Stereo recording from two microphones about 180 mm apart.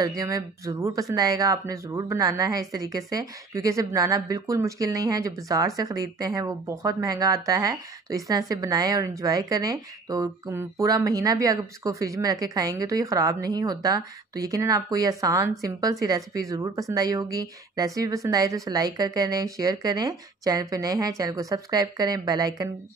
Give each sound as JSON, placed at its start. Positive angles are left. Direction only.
{"t": 0.0, "sound": "a woman's voice", "side_deg": -20}